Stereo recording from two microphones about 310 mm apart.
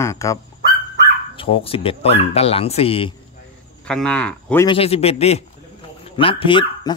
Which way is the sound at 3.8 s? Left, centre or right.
Centre.